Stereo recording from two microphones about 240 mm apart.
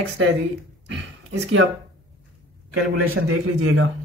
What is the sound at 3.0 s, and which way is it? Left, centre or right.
Speech, right.